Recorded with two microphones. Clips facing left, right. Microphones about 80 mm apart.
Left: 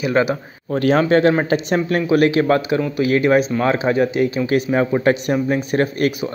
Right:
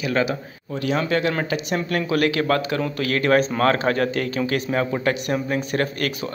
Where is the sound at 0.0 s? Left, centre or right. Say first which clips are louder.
Left 5 dB; left.